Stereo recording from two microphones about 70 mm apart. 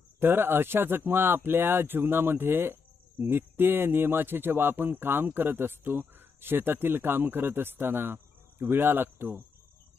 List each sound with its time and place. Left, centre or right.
0.2 s speech: right